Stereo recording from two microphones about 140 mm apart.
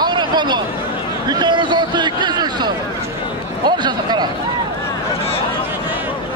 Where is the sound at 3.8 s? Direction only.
30° right (ahead or behind).